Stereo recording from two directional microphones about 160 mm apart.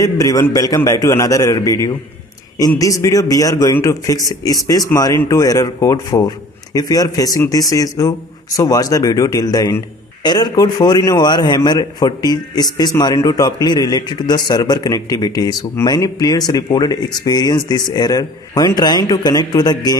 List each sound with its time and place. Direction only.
0.0 s a man's voice: 20° left (ahead or behind)